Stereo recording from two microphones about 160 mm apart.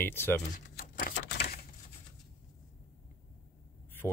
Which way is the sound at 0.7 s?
70° left (ahead or behind).